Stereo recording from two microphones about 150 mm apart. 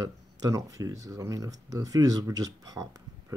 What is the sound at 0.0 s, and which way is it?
Speech, 25° right (ahead or behind).